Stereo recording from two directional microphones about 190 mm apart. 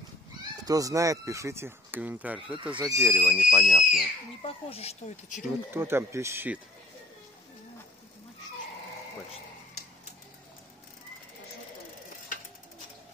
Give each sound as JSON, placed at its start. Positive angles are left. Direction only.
{"t": 0.4, "sound": "speech", "side_deg": -20}
{"t": 4.4, "sound": "speech", "side_deg": 30}
{"t": 5.7, "sound": "speech", "side_deg": -10}